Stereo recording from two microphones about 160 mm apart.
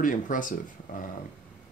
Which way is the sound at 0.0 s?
55° left (ahead or behind).